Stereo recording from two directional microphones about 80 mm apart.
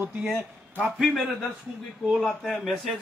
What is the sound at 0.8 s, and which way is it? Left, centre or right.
Speech, centre.